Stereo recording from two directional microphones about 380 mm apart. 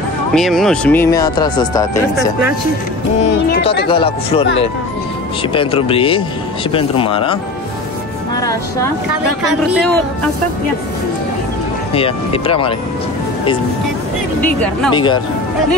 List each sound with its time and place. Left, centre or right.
0.3 s speech: centre
3.4 s speech: left
3.8 s speech: centre
11.9 s speech: centre
14.6 s speech: centre